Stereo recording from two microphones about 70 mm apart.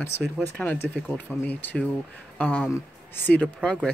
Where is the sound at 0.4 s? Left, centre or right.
Left.